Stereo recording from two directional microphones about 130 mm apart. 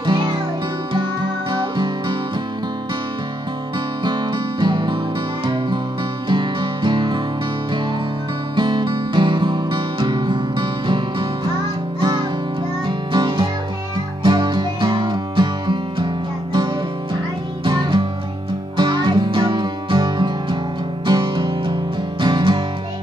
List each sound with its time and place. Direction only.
0.0 s music: 35° right (ahead or behind)
1.5 s music: 35° right (ahead or behind)
4.0 s music: 35° right (ahead or behind)
8.5 s music: 35° right (ahead or behind)